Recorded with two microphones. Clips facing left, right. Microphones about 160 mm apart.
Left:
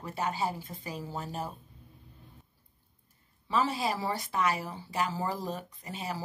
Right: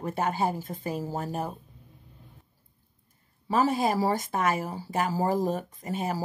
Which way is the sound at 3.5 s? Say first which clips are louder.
Right 5 dB; 50° right (ahead or behind).